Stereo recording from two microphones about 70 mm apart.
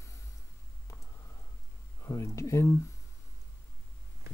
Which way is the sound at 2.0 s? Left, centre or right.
Left.